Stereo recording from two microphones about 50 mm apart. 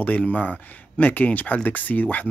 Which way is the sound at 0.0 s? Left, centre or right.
Left.